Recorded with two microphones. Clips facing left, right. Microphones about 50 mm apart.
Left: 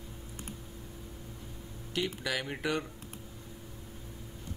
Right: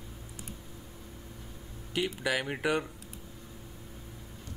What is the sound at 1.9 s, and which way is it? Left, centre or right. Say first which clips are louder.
Speech: right 3 dB; centre.